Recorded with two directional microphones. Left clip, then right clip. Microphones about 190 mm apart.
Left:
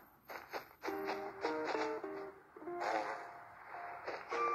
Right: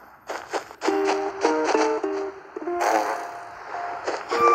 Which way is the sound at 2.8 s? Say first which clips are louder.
Right 16 dB; 30° right (ahead or behind).